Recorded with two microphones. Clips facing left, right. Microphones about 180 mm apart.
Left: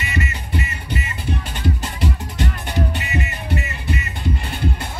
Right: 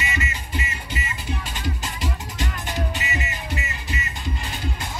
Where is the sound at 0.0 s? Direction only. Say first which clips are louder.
Left 3 dB; 60° left (ahead or behind).